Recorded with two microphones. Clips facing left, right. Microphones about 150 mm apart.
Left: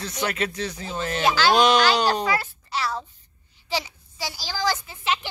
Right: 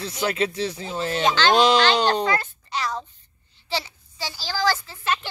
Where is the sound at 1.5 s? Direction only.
25° right (ahead or behind).